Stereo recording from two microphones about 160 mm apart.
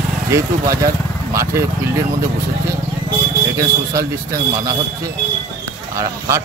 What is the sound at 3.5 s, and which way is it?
A man's voice, 20° right (ahead or behind).